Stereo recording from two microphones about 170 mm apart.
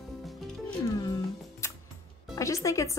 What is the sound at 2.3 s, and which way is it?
Speech, 20° left (ahead or behind).